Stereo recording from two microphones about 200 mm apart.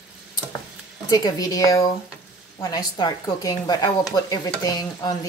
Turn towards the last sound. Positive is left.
turn(degrees=20)  # may be behind; listen again after turning